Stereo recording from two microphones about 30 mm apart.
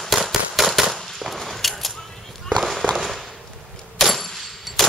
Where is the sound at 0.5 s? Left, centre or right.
Centre.